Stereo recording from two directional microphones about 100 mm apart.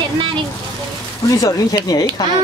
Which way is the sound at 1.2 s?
35° left (ahead or behind).